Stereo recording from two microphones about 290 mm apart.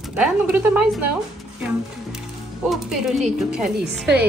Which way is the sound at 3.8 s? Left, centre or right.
Right.